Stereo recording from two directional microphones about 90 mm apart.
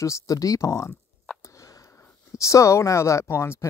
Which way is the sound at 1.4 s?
35° left (ahead or behind).